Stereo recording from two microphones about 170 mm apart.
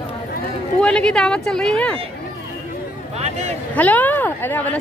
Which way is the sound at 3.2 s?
40° right (ahead or behind).